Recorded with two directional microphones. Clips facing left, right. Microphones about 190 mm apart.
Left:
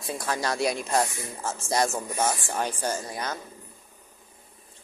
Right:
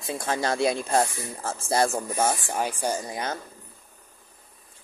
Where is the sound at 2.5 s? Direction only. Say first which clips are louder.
Right 2 dB; 10° right (ahead or behind).